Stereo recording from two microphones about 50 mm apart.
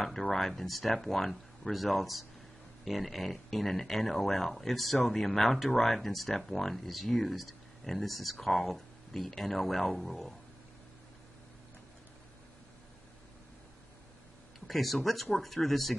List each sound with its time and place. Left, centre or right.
0.0 s speech: centre
14.7 s speech: centre